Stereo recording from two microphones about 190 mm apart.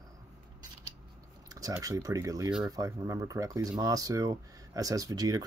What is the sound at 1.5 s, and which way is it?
Speech, 20° right (ahead or behind).